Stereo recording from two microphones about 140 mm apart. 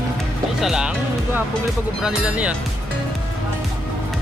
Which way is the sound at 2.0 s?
10° right (ahead or behind).